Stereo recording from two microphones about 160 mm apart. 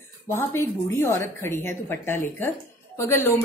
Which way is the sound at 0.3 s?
15° left (ahead or behind).